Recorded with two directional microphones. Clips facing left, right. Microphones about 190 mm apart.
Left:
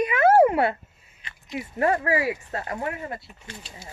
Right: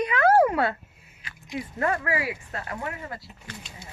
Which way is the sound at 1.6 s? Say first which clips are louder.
Left 4 dB; 25° left (ahead or behind).